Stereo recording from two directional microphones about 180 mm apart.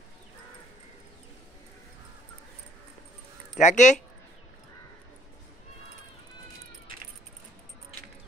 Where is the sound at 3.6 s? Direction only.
40° left (ahead or behind).